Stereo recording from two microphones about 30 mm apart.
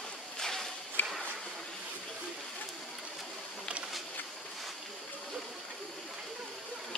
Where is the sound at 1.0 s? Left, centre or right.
Left.